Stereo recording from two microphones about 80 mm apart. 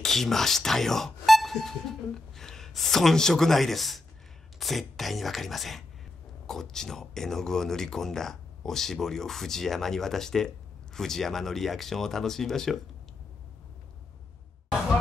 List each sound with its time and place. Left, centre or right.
0.0 s speech: centre